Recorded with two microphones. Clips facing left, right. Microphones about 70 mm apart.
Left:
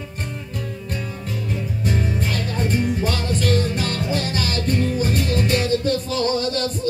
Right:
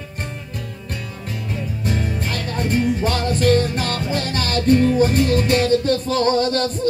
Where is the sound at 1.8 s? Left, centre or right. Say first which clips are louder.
Left 1 dB; right.